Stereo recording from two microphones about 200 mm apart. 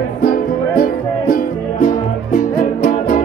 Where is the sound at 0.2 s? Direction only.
45° left (ahead or behind).